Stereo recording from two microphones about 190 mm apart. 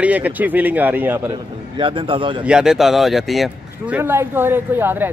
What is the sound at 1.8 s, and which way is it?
Speech, 25° right (ahead or behind).